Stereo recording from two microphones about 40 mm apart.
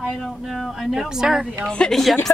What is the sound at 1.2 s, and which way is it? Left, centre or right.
Speech, centre.